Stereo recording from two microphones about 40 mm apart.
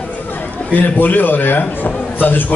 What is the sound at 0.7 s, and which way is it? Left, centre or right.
Speech, left.